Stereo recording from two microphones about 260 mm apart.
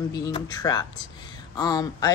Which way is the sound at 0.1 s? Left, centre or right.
Centre.